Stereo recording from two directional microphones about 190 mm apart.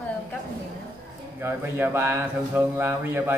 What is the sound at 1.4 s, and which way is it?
A man's voice, 10° right (ahead or behind).